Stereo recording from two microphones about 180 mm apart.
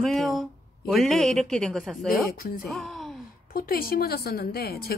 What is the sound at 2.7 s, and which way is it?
Speech, centre (ahead or behind).